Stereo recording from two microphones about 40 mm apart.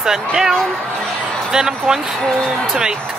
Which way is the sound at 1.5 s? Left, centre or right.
Centre.